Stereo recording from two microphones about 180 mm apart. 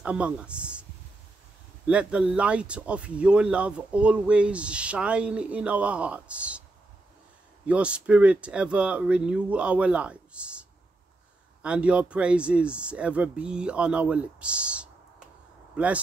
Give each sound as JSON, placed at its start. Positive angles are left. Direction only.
{"t": 0.0, "sound": "speech", "side_deg": -5}
{"t": 1.9, "sound": "speech", "side_deg": -5}
{"t": 7.6, "sound": "speech", "side_deg": -5}